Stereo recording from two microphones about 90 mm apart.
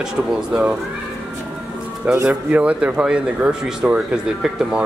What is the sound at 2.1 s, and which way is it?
Speech, 10° right (ahead or behind).